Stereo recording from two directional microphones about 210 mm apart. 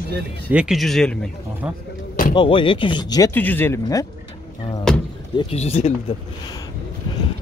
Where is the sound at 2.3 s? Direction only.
25° left (ahead or behind).